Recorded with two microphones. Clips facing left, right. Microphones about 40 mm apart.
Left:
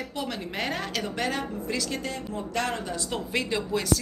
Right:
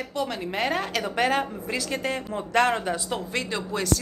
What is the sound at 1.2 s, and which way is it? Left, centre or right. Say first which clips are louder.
Speech: right 7 dB; right.